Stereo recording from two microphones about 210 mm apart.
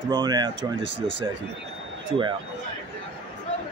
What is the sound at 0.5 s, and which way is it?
Speech, 60° right (ahead or behind).